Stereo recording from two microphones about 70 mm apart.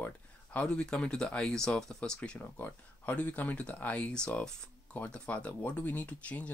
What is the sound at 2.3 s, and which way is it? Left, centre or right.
Speech, left.